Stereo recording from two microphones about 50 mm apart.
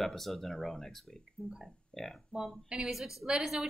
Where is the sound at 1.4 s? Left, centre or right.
Left.